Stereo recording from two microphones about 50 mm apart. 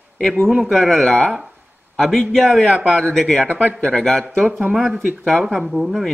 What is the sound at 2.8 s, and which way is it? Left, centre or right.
Speech, right.